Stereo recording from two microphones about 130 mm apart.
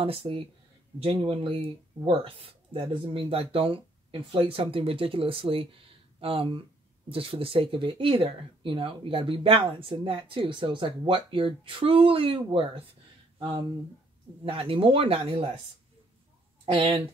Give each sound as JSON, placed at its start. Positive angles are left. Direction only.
{"t": 0.0, "sound": "speech", "side_deg": -45}
{"t": 14.4, "sound": "speech", "side_deg": -40}
{"t": 16.6, "sound": "speech", "side_deg": -45}